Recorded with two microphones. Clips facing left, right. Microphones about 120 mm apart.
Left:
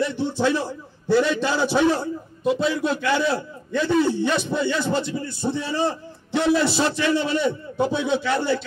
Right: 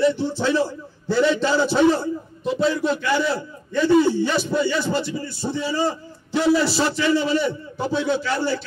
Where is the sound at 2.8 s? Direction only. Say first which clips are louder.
Right 1 dB; 15° left (ahead or behind).